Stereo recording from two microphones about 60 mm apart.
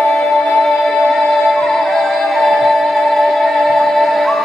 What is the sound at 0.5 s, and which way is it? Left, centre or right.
Music, centre.